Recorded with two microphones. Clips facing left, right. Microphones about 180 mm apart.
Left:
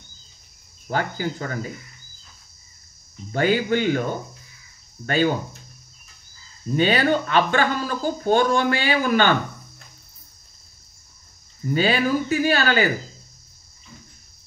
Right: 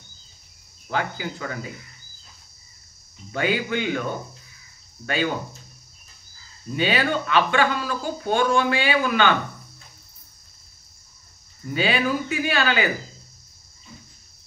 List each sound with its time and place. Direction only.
0.8 s speech: 40° left (ahead or behind)
3.3 s speech: 40° left (ahead or behind)
5.0 s speech: 40° left (ahead or behind)
6.7 s speech: 40° left (ahead or behind)
11.7 s speech: 40° left (ahead or behind)